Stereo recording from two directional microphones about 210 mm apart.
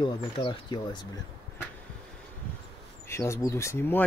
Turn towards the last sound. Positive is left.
turn(degrees=10)  # may be behind; listen again after turning